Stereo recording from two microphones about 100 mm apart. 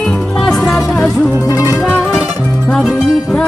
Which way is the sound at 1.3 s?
25° right (ahead or behind).